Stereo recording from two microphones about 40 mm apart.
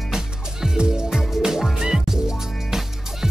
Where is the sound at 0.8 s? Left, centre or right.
Centre.